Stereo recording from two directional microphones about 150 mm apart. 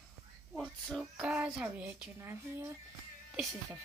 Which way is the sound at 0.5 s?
Centre (ahead or behind).